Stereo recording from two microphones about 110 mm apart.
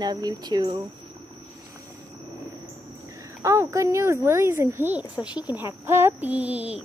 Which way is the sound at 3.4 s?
25° right (ahead or behind).